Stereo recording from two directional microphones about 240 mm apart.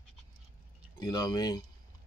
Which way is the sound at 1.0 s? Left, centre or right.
Centre.